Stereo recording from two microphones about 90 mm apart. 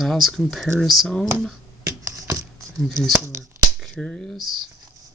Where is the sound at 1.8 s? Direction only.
40° right (ahead or behind).